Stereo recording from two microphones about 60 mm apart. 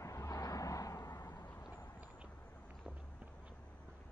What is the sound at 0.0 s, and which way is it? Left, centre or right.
Vehicle, left.